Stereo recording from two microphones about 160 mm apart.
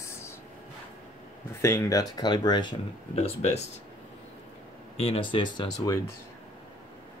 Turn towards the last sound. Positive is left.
turn(degrees=25)  # may be behind; listen again after turning